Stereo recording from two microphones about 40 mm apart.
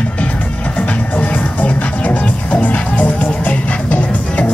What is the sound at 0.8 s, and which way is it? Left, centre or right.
Music, left.